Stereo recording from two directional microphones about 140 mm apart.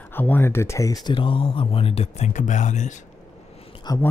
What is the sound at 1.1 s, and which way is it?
Speech, 40° left (ahead or behind).